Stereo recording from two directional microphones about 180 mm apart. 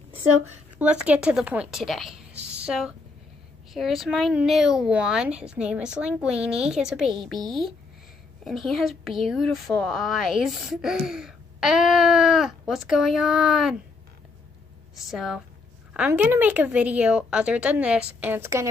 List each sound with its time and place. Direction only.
0.7 s speech: 5° right (ahead or behind)
2.4 s a sound: 5° right (ahead or behind)
3.7 s speech: centre (ahead or behind)
7.3 s speech: 25° right (ahead or behind)
8.5 s speech: centre (ahead or behind)
15.0 s a woman's voice: centre (ahead or behind)